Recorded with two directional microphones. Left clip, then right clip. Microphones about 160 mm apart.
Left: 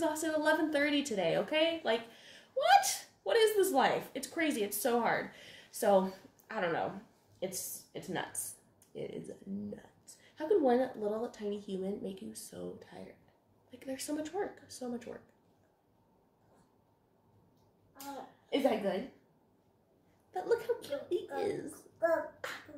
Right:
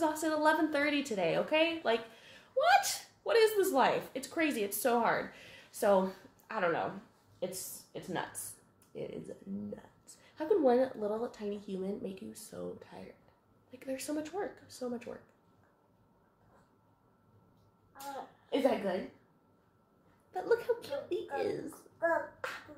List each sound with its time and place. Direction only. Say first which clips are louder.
0.0 s a woman's voice: right 2 dB; centre (ahead or behind)
18.5 s a woman's voice: even; centre (ahead or behind)
20.2 s a woman's voice: right 1 dB; 5° right (ahead or behind)